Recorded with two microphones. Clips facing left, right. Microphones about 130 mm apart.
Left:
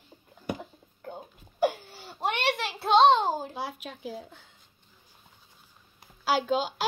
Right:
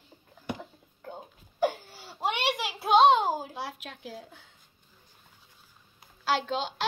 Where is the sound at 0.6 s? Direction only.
10° left (ahead or behind).